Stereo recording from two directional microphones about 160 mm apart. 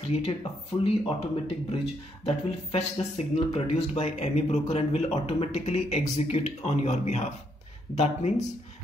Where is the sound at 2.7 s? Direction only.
40° left (ahead or behind).